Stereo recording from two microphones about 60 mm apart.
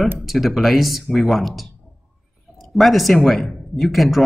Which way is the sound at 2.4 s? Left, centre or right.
Centre.